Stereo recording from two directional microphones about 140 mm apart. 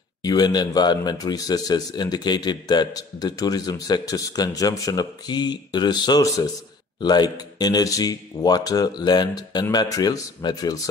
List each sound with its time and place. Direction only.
0.2 s speech: 30° left (ahead or behind)